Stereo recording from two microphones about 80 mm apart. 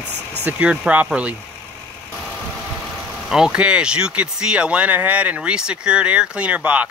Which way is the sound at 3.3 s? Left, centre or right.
Centre.